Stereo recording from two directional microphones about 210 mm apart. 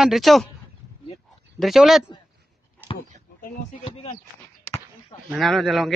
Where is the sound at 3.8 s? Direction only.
30° left (ahead or behind).